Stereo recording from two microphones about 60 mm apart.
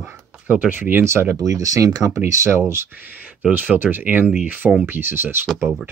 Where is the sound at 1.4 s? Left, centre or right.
Right.